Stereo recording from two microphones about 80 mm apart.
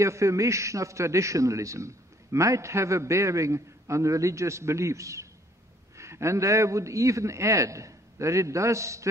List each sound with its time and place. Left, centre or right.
0.0 s a man's voice: right